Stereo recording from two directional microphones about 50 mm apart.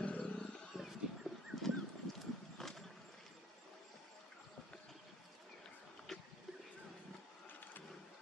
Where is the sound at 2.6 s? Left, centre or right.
Centre.